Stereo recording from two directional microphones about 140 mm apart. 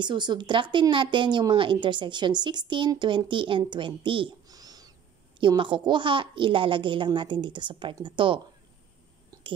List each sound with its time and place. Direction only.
0.0 s speech: 35° right (ahead or behind)
9.3 s whispering: 25° right (ahead or behind)